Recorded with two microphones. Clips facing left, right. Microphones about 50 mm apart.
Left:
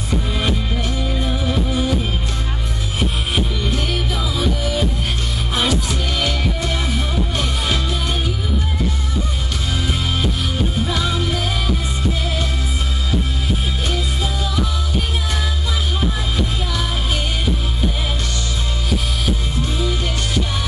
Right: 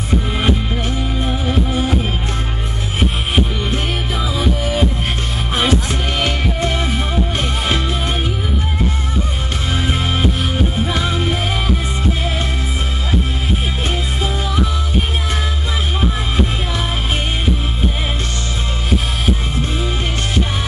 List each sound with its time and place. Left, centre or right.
1.2 s music: right
3.0 s music: right
10.8 s music: right
13.8 s music: right
19.8 s music: right